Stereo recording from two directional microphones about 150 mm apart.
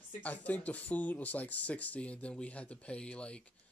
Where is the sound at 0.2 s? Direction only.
10° left (ahead or behind).